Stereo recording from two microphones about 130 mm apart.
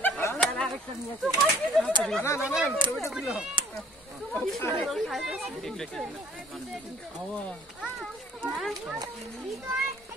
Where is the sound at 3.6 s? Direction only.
40° right (ahead or behind).